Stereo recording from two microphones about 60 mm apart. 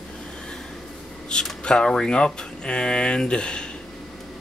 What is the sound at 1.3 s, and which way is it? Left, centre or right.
Speech, centre.